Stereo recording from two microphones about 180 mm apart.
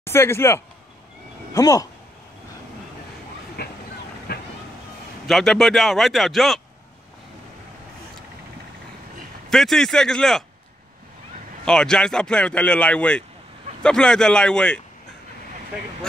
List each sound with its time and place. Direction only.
0.0 s speech: 15° left (ahead or behind)
3.6 s vehicle: 60° left (ahead or behind)
5.2 s speech: centre (ahead or behind)
9.5 s speech: centre (ahead or behind)
11.6 s speech: 5° left (ahead or behind)